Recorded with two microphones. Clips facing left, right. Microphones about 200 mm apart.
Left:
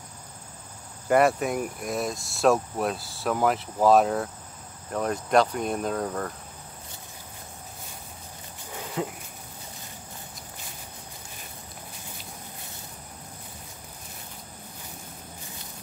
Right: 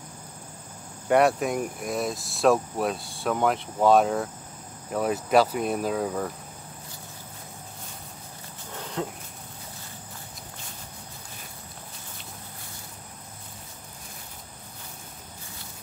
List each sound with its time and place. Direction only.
1.0 s speech: centre (ahead or behind)
8.7 s cricket: 5° left (ahead or behind)